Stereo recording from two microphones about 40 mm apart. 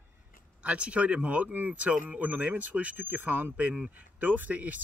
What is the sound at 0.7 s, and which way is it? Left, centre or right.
Speech, right.